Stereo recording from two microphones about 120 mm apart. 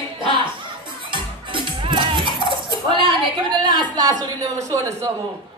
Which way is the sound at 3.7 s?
35° right (ahead or behind).